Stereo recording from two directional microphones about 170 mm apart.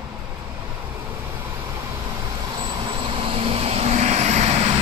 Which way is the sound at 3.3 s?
35° right (ahead or behind).